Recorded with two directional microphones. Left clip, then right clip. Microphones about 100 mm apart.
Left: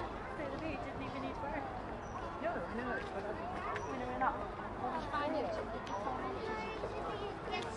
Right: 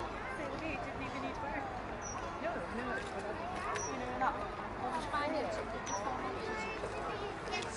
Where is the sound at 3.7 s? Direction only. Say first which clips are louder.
Right 2 dB; 25° left (ahead or behind).